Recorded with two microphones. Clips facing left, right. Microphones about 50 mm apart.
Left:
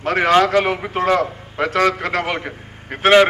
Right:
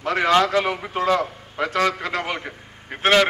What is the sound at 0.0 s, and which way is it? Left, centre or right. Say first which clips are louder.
A man's voice: left 3 dB; left.